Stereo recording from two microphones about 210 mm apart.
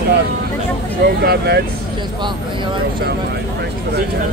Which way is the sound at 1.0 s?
50° right (ahead or behind).